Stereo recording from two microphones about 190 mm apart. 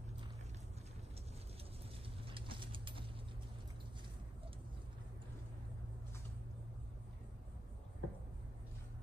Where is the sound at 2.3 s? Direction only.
25° right (ahead or behind).